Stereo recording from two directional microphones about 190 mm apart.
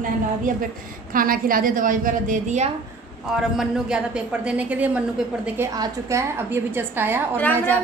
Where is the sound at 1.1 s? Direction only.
45° right (ahead or behind).